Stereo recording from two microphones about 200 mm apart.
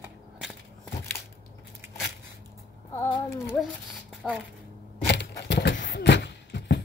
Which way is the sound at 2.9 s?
10° left (ahead or behind).